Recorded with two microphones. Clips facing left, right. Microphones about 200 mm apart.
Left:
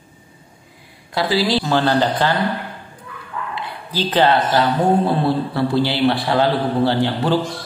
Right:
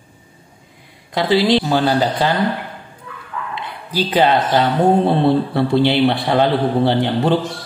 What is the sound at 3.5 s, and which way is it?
Speech, 15° right (ahead or behind).